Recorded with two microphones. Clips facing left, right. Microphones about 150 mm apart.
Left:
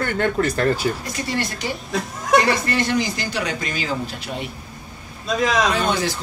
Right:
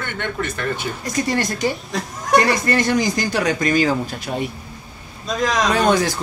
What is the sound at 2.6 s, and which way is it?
Speech, 45° right (ahead or behind).